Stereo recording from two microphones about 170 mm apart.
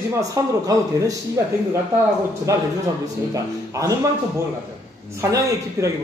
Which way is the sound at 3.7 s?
20° right (ahead or behind).